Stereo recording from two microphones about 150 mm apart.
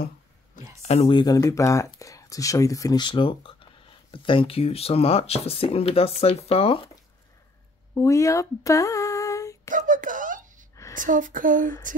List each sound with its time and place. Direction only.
0.8 s speech: 45° left (ahead or behind)
1.1 s speech: 25° left (ahead or behind)
7.9 s speech: 20° left (ahead or behind)
9.7 s a sound: 60° right (ahead or behind)
11.0 s a woman's voice: 60° right (ahead or behind)